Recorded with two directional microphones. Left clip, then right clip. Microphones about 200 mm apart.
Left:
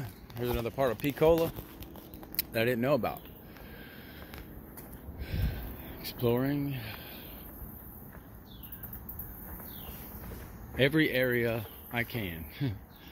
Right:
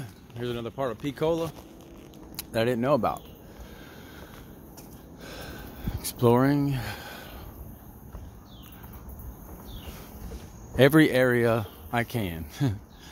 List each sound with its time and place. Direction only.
0.0 s a sound: 5° right (ahead or behind)
0.7 s speech: 10° left (ahead or behind)
2.5 s speech: 15° right (ahead or behind)
6.1 s speech: 45° right (ahead or behind)
10.8 s speech: 35° right (ahead or behind)